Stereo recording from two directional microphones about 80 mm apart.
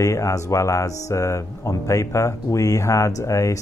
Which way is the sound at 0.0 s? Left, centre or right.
Left.